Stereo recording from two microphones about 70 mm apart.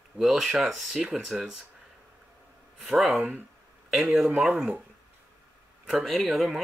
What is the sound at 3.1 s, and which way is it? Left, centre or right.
Speech, right.